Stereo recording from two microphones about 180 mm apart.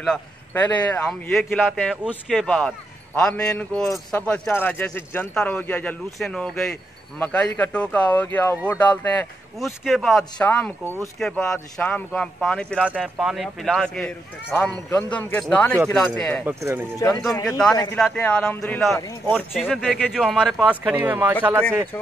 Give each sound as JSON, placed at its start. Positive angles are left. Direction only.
{"t": 0.0, "sound": "a man's voice", "side_deg": 5}
{"t": 16.4, "sound": "speech", "side_deg": -10}
{"t": 17.3, "sound": "a man's voice", "side_deg": 20}
{"t": 17.9, "sound": "a man's voice", "side_deg": 5}
{"t": 18.9, "sound": "speech", "side_deg": 15}
{"t": 19.5, "sound": "a man's voice", "side_deg": -5}